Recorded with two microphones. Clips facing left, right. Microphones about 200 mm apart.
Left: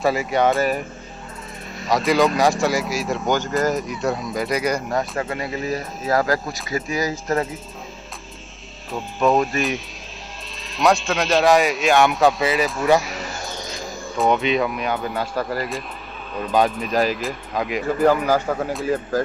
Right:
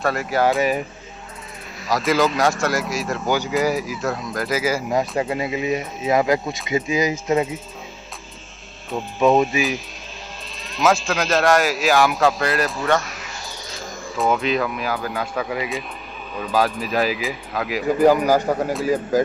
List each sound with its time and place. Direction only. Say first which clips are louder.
0.0 s speech: left 1 dB; centre (ahead or behind)
5.2 s speech: right 3 dB; 20° right (ahead or behind)
6.4 s speech: right 2 dB; centre (ahead or behind)
6.7 s speech: right 3 dB; 20° right (ahead or behind)
8.9 s speech: right 2 dB; centre (ahead or behind)